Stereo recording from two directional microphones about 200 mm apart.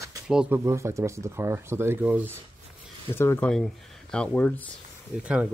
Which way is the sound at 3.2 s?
10° left (ahead or behind).